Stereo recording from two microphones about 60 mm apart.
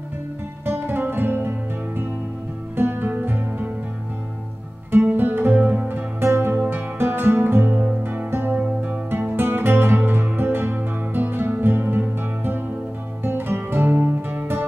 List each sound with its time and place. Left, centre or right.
0.7 s guitar: right
2.7 s music: right
5.0 s music: right
8.5 s music: right